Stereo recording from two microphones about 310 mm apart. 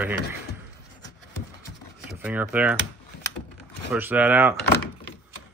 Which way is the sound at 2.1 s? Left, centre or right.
Centre.